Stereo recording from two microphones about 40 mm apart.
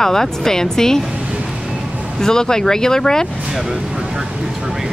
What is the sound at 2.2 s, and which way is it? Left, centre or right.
Speech, centre.